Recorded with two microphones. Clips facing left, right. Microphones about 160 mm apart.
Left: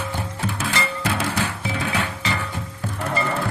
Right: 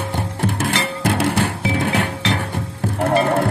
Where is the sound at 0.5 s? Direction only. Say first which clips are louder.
Right 4 dB; 55° right (ahead or behind).